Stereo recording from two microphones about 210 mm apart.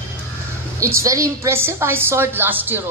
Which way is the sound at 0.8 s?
15° right (ahead or behind).